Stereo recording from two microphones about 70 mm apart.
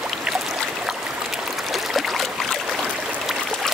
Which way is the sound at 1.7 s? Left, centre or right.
Centre.